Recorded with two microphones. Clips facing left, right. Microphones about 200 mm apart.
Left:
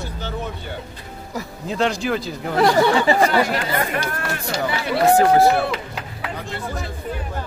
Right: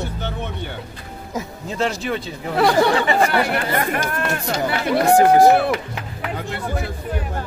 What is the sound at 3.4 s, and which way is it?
Speech, 60° right (ahead or behind).